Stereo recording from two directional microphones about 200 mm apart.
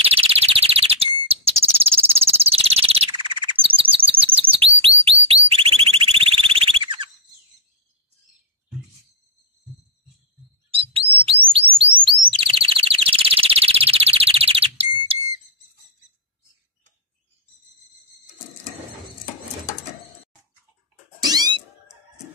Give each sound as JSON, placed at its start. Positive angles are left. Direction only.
{"t": 0.0, "sound": "chirp tone", "side_deg": -30}
{"t": 4.4, "sound": "chirp", "side_deg": -25}
{"t": 5.3, "sound": "alarm", "side_deg": -30}
{"t": 10.7, "sound": "bird", "side_deg": -30}
{"t": 11.3, "sound": "chirp tone", "side_deg": 10}
{"t": 12.0, "sound": "chirp tone", "side_deg": -25}
{"t": 15.0, "sound": "whistle", "side_deg": -20}
{"t": 21.2, "sound": "cat", "side_deg": -20}